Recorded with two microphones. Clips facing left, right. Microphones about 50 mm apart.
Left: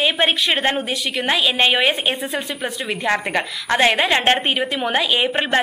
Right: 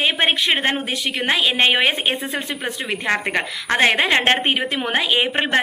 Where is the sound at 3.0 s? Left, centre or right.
Centre.